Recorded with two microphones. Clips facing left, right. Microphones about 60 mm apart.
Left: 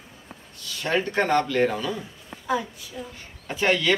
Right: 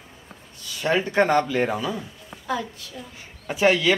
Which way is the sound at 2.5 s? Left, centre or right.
Centre.